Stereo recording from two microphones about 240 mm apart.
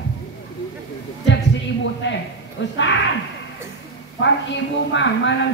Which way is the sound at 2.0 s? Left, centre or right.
Left.